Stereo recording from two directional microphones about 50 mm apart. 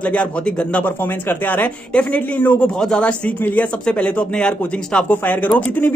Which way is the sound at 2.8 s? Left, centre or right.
Centre.